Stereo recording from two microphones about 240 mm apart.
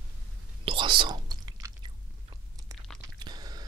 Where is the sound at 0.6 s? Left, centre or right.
Right.